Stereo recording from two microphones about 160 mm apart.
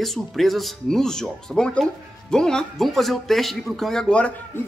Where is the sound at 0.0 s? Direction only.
Centre (ahead or behind).